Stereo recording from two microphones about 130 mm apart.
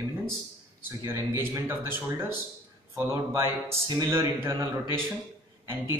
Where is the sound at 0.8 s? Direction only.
20° right (ahead or behind).